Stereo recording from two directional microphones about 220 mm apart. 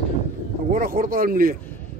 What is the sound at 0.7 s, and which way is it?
Speech, 40° right (ahead or behind).